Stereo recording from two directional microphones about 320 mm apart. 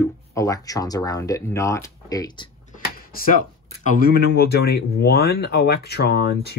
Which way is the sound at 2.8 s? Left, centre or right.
Left.